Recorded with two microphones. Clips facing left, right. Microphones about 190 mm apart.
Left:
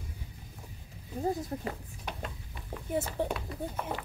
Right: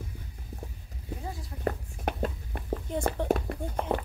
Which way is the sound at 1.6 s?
50° right (ahead or behind).